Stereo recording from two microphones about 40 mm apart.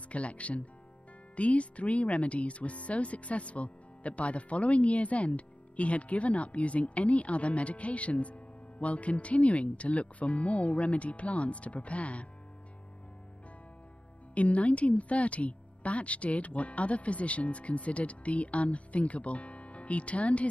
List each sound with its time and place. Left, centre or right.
0.1 s speech: left
14.3 s speech: left